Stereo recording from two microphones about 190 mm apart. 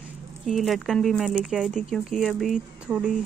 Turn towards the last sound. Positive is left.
turn(degrees=-5)  # may be behind; listen again after turning